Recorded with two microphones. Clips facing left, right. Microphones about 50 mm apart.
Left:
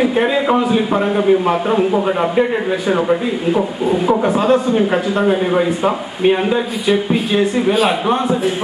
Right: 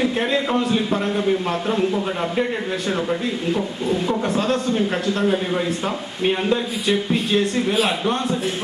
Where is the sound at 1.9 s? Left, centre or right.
Left.